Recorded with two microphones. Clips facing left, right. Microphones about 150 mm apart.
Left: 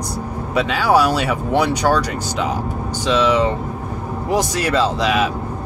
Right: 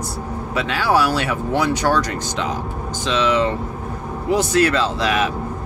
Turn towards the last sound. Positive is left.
turn(degrees=10)  # may be behind; listen again after turning